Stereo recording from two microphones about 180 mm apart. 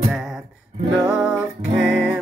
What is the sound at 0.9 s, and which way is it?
Music, 5° right (ahead or behind).